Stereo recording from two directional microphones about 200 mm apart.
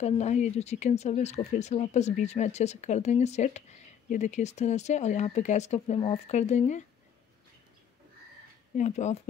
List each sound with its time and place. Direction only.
0.0 s speech: 35° left (ahead or behind)
8.7 s speech: 35° left (ahead or behind)